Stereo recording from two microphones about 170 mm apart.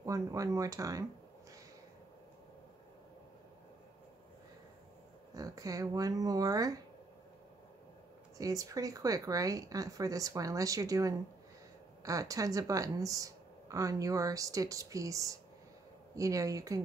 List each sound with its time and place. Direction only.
0.0 s speech: 20° right (ahead or behind)
5.3 s speech: 20° right (ahead or behind)
8.4 s speech: 20° right (ahead or behind)